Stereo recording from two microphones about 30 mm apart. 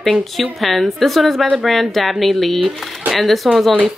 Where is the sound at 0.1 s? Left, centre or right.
Centre.